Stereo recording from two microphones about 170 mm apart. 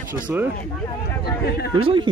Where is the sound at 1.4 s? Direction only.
70° left (ahead or behind).